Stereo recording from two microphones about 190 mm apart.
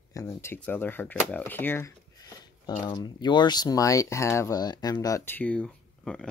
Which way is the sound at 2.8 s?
25° left (ahead or behind).